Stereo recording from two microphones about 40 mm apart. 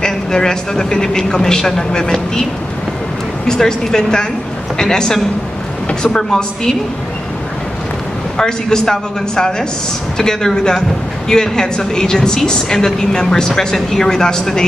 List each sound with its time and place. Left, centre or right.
0.0 s a woman's voice: centre
3.4 s a woman's voice: centre
8.4 s a woman's voice: centre